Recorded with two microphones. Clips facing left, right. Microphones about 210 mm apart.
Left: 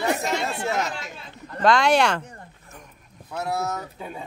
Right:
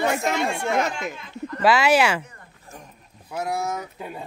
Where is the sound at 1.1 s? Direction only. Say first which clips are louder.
Right 6 dB; 35° left (ahead or behind).